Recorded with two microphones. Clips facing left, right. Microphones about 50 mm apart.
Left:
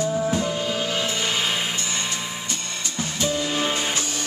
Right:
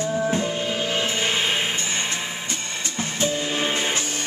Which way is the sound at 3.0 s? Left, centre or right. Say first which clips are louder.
Even; right.